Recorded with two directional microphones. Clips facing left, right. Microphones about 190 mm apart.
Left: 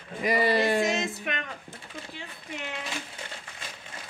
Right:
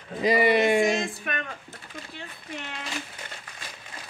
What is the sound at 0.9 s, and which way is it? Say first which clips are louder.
Speech: right 2 dB; 20° left (ahead or behind).